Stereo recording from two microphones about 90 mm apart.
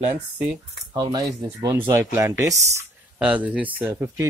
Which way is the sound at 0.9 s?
45° right (ahead or behind).